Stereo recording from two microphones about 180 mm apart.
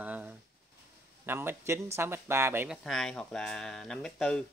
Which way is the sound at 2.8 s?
Centre (ahead or behind).